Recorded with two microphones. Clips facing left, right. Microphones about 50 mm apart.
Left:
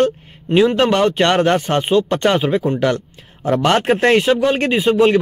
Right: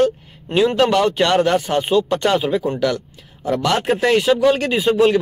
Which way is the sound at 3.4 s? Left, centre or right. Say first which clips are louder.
Left 3 dB; left.